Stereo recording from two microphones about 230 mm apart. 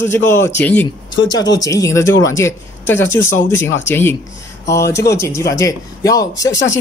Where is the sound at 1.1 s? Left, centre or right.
Centre.